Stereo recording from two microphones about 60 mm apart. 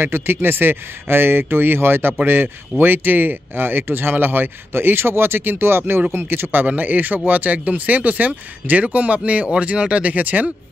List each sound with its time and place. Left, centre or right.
0.0 s speech: right